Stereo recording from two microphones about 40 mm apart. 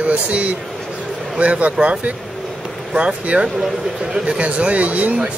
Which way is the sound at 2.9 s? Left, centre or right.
Right.